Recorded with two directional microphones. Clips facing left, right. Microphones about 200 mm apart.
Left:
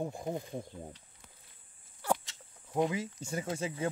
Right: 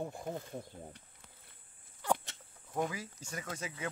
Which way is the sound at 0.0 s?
15° left (ahead or behind).